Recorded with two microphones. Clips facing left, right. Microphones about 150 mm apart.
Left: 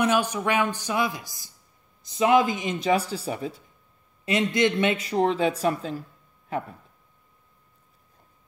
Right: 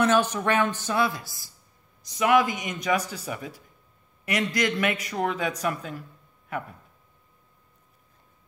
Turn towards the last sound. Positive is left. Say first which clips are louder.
# left 3 dB
turn(degrees=30)  # may be behind; listen again after turning